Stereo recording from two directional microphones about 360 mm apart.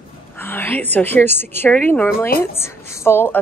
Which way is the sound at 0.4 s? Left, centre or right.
Centre.